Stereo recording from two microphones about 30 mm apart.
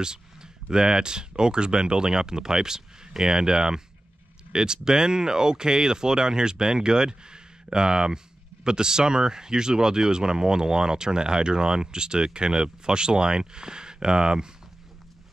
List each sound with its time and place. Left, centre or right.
0.0 s speech: right